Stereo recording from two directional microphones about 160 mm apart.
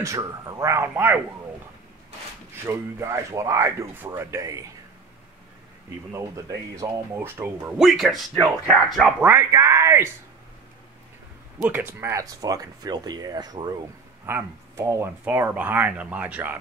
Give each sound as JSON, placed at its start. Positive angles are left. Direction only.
{"t": 0.0, "sound": "speech", "side_deg": -20}
{"t": 2.6, "sound": "speech", "side_deg": -20}
{"t": 5.9, "sound": "speech", "side_deg": -15}
{"t": 7.7, "sound": "speech", "side_deg": 0}
{"t": 11.6, "sound": "speech", "side_deg": -10}